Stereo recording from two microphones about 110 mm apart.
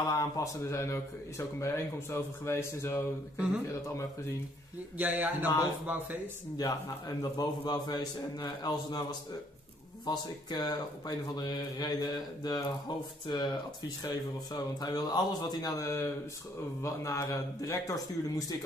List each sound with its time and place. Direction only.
0.0 s speech: 35° left (ahead or behind)
4.9 s a man's voice: 15° right (ahead or behind)
6.6 s speech: 35° left (ahead or behind)
10.0 s speech: 40° left (ahead or behind)